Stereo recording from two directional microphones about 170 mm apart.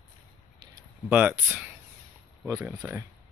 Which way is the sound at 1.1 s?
10° right (ahead or behind).